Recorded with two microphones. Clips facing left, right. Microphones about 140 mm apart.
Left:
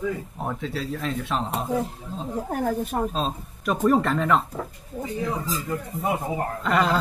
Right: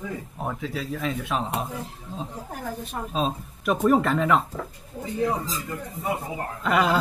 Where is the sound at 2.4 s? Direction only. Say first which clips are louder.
Left 8 dB; 45° left (ahead or behind).